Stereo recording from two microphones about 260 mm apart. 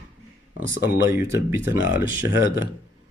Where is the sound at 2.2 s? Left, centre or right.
Left.